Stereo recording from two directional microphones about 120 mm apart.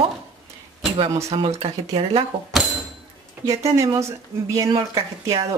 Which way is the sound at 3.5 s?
25° right (ahead or behind).